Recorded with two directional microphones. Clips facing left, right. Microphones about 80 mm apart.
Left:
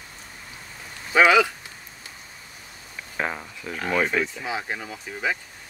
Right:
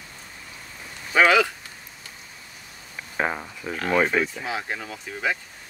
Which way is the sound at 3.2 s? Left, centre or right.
Centre.